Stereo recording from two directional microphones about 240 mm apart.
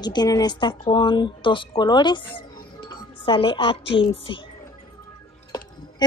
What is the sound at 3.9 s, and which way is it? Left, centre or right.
Speech, left.